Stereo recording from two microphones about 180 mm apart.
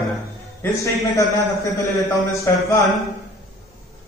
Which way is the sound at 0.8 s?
20° left (ahead or behind).